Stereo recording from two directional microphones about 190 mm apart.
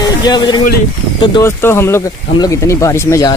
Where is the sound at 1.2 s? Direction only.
25° left (ahead or behind).